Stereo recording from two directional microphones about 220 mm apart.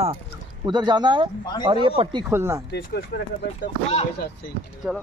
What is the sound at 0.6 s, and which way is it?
Speech, 20° right (ahead or behind).